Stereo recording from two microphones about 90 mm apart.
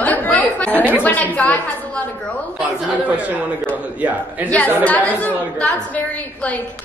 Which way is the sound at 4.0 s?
15° right (ahead or behind).